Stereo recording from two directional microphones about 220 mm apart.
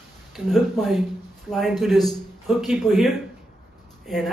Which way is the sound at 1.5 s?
Centre (ahead or behind).